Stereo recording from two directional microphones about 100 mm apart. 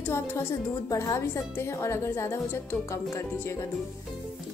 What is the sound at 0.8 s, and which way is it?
A woman's voice, 35° left (ahead or behind).